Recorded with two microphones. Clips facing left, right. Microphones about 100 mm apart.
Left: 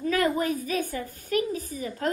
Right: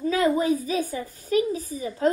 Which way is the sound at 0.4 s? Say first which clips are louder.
Right 4 dB; 50° left (ahead or behind).